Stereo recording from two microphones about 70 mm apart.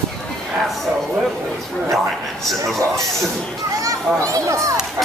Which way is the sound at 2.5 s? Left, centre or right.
Centre.